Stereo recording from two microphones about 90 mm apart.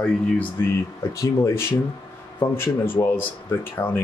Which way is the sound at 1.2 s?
30° left (ahead or behind).